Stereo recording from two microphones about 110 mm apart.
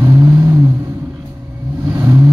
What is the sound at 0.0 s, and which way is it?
Vehicle, 25° right (ahead or behind).